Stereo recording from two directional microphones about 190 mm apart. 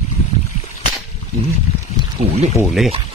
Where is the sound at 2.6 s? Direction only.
Centre (ahead or behind).